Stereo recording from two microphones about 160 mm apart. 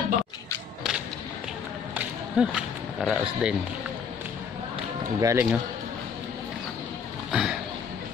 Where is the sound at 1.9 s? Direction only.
5° right (ahead or behind).